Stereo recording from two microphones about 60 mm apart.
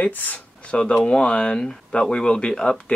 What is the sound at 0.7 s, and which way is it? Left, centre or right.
Speech, centre.